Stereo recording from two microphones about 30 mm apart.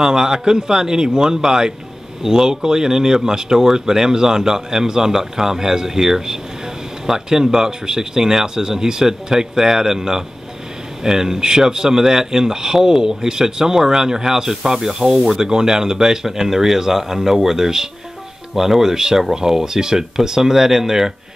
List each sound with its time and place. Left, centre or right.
0.0 s speech: centre